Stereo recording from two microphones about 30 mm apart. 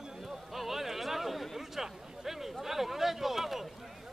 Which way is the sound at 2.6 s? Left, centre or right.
Centre.